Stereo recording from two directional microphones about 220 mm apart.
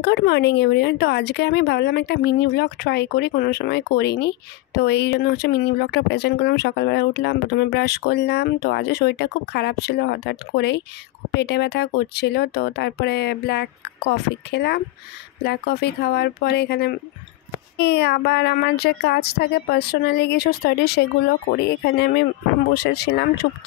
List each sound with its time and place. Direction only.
0.0 s speech: 50° left (ahead or behind)